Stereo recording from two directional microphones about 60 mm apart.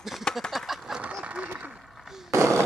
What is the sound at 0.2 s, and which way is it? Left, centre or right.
Duck, centre.